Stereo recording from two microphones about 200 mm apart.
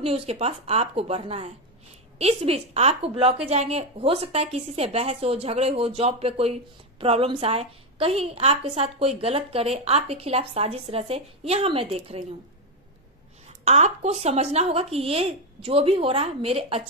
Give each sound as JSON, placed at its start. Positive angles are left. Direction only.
{"t": 0.0, "sound": "a woman's voice", "side_deg": -30}
{"t": 13.7, "sound": "a woman's voice", "side_deg": -35}